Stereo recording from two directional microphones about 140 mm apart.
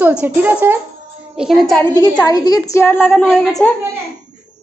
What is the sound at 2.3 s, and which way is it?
Speech, 25° left (ahead or behind).